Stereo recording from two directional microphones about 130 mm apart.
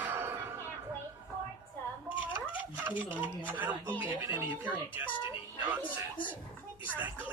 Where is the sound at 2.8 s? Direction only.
15° right (ahead or behind).